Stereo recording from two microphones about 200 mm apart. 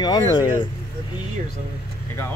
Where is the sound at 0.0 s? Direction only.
20° left (ahead or behind).